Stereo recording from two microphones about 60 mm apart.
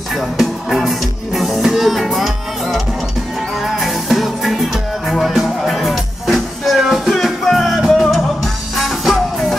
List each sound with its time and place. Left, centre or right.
0.1 s music: centre